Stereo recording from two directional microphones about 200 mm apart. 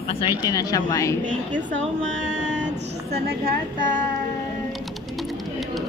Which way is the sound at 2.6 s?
60° right (ahead or behind).